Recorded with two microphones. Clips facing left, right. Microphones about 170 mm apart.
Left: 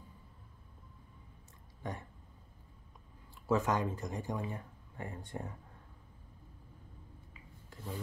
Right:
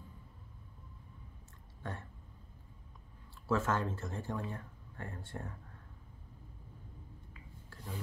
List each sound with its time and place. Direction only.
1.8 s speech: 15° left (ahead or behind)
3.4 s speech: 15° left (ahead or behind)
7.7 s filing: 20° left (ahead or behind)